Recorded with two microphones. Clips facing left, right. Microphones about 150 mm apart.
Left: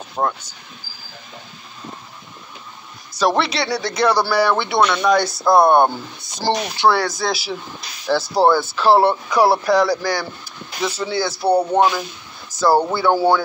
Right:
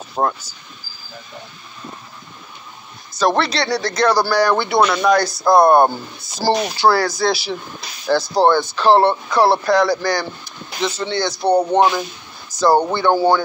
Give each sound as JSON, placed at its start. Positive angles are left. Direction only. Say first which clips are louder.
{"t": 0.2, "sound": "speech", "louder": "right 2 dB", "side_deg": -15}
{"t": 3.2, "sound": "speech", "louder": "right 1 dB", "side_deg": 5}
{"t": 12.4, "sound": "a sound", "louder": "right 1 dB", "side_deg": 5}
{"t": 12.9, "sound": "speech", "louder": "right 1 dB", "side_deg": 5}